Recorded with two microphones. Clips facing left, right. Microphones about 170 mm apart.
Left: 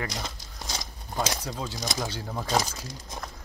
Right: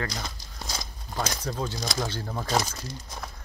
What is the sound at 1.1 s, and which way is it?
Speech, 20° left (ahead or behind).